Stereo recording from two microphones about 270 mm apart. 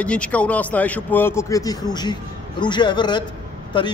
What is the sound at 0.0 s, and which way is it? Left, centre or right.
Speech, centre.